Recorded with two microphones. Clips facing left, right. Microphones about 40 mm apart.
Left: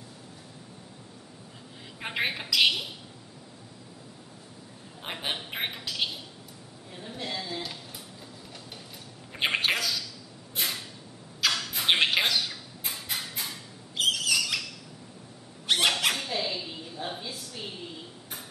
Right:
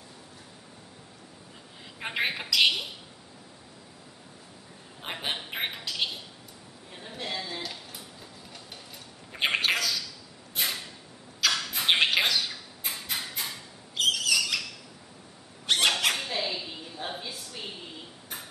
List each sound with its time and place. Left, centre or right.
2.0 s a woman's voice: centre
5.0 s a woman's voice: centre
9.3 s bird: centre
10.5 s a sound: centre